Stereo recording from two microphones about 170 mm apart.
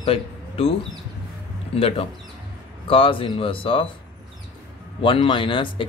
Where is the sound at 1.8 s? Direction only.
35° left (ahead or behind).